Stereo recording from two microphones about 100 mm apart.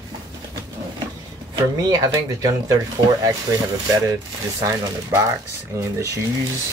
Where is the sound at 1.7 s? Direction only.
40° right (ahead or behind).